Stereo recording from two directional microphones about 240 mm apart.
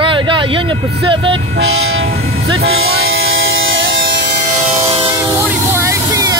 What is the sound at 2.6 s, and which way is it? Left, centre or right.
Music, right.